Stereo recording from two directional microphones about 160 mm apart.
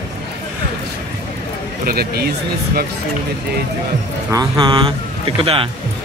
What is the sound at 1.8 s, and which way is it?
Speech, 75° right (ahead or behind).